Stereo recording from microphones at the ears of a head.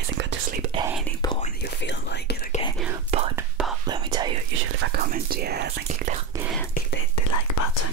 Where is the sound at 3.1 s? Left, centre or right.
Right.